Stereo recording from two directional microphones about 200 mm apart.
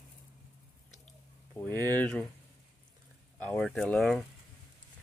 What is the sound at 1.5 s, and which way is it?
Speech, 10° left (ahead or behind).